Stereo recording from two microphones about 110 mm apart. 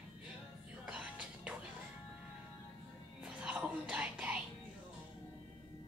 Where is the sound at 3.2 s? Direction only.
10° right (ahead or behind).